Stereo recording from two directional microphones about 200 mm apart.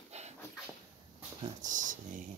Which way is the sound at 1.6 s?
40° right (ahead or behind).